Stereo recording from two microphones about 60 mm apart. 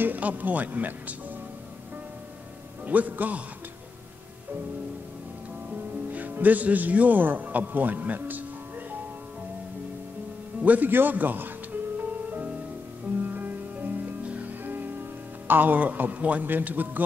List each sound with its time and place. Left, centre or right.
0.0 s speech: right
2.9 s a man's voice: right
6.1 s speech: right
10.6 s speech: right
12.0 s music: right